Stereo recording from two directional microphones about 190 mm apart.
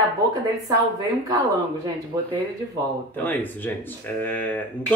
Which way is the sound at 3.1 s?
10° left (ahead or behind).